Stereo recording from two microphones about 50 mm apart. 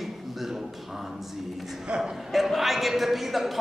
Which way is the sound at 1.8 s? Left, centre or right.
Centre.